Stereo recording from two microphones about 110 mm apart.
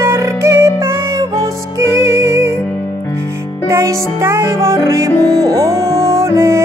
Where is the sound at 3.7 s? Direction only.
25° right (ahead or behind).